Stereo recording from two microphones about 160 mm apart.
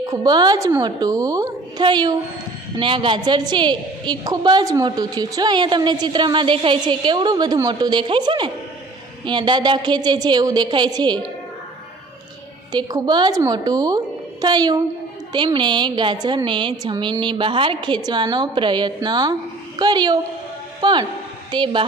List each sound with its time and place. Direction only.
0.0 s a woman's voice: 20° right (ahead or behind)
12.7 s a woman's voice: 25° right (ahead or behind)